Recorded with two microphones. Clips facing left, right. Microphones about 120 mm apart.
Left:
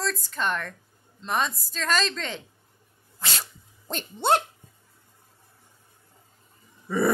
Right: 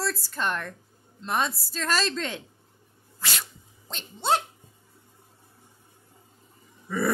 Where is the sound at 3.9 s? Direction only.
55° left (ahead or behind).